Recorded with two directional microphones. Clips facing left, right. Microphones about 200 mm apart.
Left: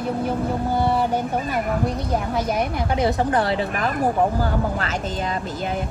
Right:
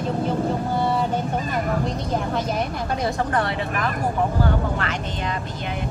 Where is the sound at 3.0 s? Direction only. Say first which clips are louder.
Left 3 dB; 30° left (ahead or behind).